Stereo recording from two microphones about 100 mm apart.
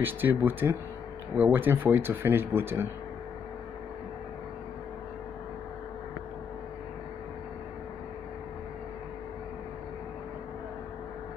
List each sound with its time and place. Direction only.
0.0 s speech: 20° right (ahead or behind)